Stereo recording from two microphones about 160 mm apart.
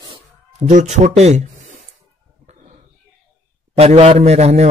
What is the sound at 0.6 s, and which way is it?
Speech, 50° right (ahead or behind).